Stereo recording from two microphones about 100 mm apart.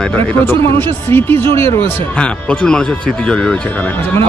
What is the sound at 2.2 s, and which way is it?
Speech, 10° left (ahead or behind).